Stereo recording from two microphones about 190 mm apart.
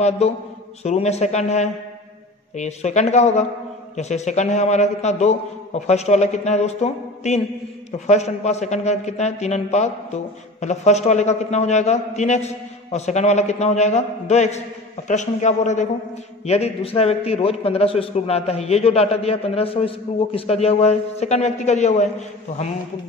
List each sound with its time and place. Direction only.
0.8 s a man's voice: 35° left (ahead or behind)